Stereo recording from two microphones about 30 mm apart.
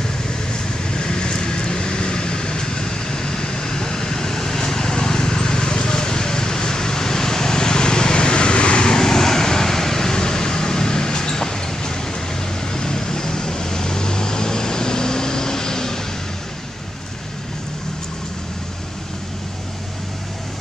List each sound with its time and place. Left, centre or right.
0.5 s vehicle: left